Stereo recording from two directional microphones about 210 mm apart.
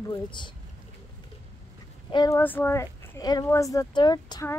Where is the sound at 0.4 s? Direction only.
20° left (ahead or behind).